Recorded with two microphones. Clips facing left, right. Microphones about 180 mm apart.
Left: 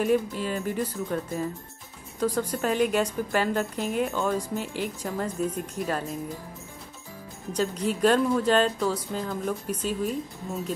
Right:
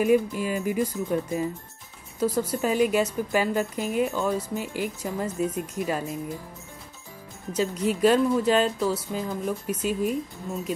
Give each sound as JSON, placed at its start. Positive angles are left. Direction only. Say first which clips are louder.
{"t": 0.0, "sound": "speech", "louder": "right 3 dB", "side_deg": -10}
{"t": 7.7, "sound": "speech", "louder": "right 2 dB", "side_deg": 40}
{"t": 8.0, "sound": "speech", "louder": "right 1 dB", "side_deg": -5}